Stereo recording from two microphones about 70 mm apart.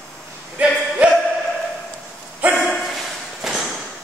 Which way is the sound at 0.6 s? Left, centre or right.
Right.